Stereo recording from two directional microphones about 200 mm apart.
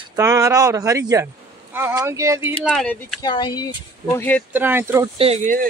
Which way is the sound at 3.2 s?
20° left (ahead or behind).